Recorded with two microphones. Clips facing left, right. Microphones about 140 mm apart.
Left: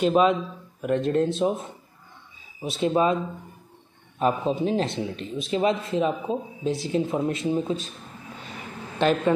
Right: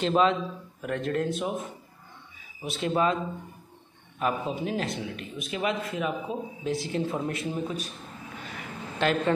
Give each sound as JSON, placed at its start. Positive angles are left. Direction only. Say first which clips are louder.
{"t": 0.0, "sound": "a man's voice", "louder": "left 3 dB", "side_deg": 15}
{"t": 2.8, "sound": "a man's voice", "louder": "left 4 dB", "side_deg": 20}
{"t": 4.2, "sound": "a man's voice", "louder": "left 5 dB", "side_deg": 30}
{"t": 8.5, "sound": "a sound", "louder": "left 4 dB", "side_deg": 20}